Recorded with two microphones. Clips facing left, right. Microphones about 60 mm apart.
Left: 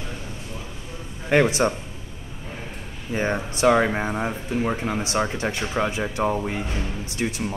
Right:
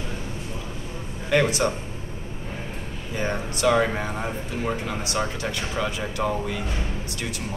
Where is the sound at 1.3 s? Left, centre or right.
Left.